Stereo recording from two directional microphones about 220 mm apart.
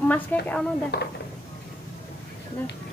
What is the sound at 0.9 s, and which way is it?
Speech, 50° left (ahead or behind).